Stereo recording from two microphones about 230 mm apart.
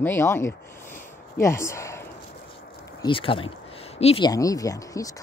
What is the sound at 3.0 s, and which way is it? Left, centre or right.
Speech, left.